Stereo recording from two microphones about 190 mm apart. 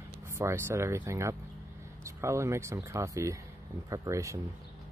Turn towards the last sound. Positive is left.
turn(degrees=-15)  # may be behind; listen again after turning